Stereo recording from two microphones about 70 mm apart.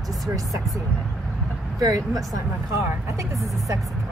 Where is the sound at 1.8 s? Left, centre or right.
Right.